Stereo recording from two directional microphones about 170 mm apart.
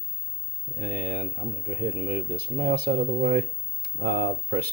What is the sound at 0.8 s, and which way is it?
Speech, 65° right (ahead or behind).